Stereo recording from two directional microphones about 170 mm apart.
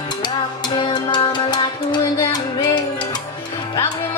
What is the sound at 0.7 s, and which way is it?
Music, 30° left (ahead or behind).